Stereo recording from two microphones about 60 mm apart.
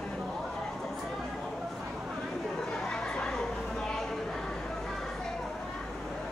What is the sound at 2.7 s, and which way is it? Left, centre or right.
Chatter, centre.